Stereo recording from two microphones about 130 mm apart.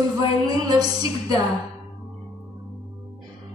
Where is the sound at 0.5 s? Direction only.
30° right (ahead or behind).